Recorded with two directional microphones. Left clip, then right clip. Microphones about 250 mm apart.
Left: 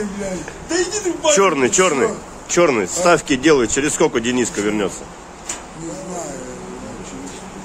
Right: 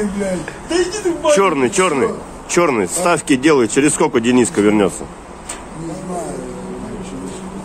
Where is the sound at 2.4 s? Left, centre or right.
Right.